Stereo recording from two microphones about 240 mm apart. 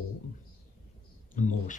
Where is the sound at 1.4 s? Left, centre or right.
Left.